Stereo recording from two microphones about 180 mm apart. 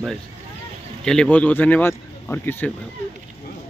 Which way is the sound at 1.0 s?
5° left (ahead or behind).